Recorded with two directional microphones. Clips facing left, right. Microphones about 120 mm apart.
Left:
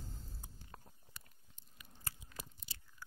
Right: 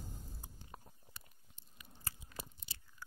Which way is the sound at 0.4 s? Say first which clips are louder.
Right 1 dB; 20° right (ahead or behind).